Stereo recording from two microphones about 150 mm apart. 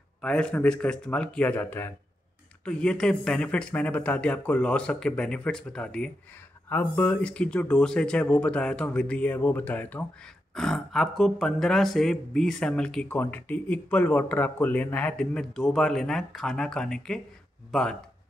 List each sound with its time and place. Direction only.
0.2 s speech: 5° left (ahead or behind)